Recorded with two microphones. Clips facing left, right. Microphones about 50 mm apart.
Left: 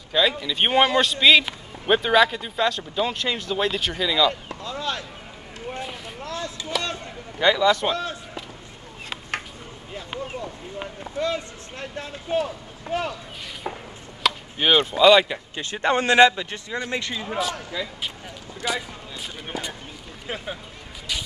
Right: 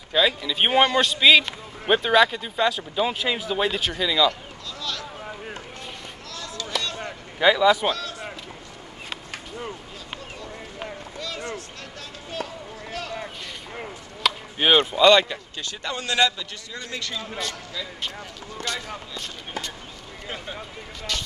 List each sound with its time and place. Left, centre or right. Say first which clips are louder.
0.1 s speech: even; centre
4.3 s a sound: left 3 dB; left
6.2 s chop: left 4 dB; left
7.3 s a man's voice: right 1 dB; centre
7.9 s a sound: left 3 dB; left
11.1 s a sound: left 7 dB; left
14.2 s chop: even; centre
15.0 s speech: left 2 dB; centre
15.2 s speech: left 3 dB; centre
15.6 s a man's voice: left 11 dB; left
17.4 s speech: left 5 dB; centre